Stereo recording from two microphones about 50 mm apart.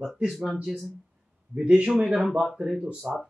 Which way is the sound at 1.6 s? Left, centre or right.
Centre.